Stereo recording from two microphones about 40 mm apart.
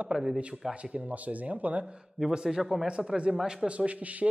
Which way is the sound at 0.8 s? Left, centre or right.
Right.